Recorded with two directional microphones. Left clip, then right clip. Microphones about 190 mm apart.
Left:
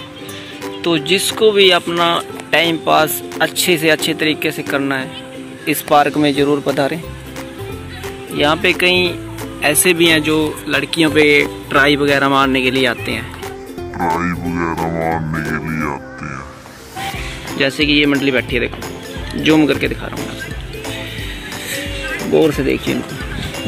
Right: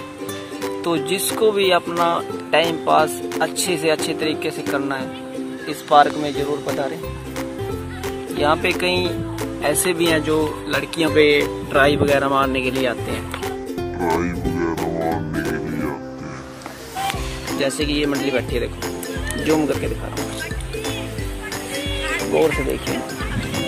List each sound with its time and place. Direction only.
0.8 s speech: 10° right (ahead or behind)
5.7 s speech: 15° left (ahead or behind)
8.4 s speech: centre (ahead or behind)
13.9 s music: centre (ahead or behind)
17.5 s speech: centre (ahead or behind)
21.7 s music: centre (ahead or behind)
22.4 s speech: centre (ahead or behind)